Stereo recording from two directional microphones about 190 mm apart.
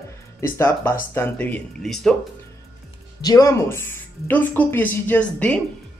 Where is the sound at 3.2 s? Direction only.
15° left (ahead or behind).